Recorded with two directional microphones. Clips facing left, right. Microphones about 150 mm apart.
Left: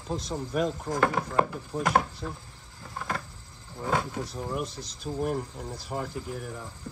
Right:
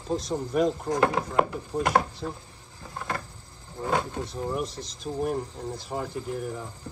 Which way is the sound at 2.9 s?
Centre (ahead or behind).